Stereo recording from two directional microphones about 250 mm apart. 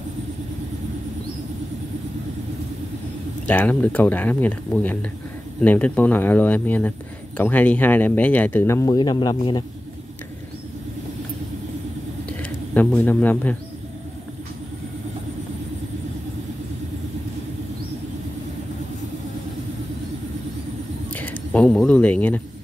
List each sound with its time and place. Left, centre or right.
3.4 s speech: centre
12.4 s speech: centre
21.1 s speech: centre